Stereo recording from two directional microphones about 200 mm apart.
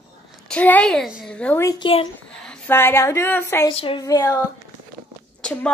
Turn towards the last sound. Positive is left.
turn(degrees=5)  # may be behind; listen again after turning